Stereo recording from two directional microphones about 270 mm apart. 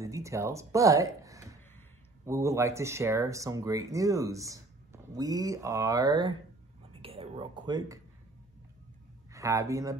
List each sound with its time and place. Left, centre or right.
0.0 s speech: centre
6.9 s whispering: right
9.3 s a man's voice: centre